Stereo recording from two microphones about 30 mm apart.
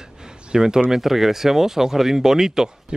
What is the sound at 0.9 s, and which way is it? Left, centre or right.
Speech, centre.